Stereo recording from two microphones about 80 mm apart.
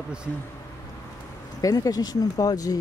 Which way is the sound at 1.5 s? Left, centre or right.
Left.